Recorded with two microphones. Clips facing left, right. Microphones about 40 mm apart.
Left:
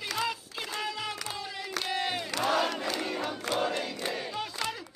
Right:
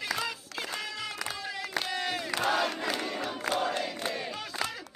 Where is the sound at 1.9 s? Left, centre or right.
Left.